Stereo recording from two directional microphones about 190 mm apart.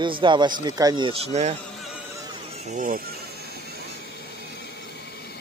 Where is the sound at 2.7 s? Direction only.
45° right (ahead or behind).